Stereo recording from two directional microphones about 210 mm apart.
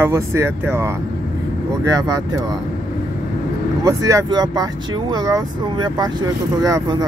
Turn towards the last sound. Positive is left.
turn(degrees=-15)  # may be behind; listen again after turning